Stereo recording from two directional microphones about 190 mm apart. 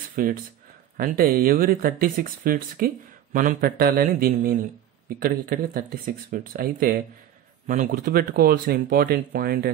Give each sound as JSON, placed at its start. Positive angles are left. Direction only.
{"t": 0.1, "sound": "speech", "side_deg": -50}